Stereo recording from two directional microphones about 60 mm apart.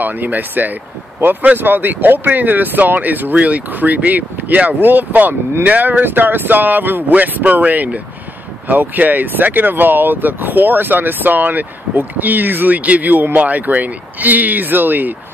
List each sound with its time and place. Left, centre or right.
0.0 s speech: right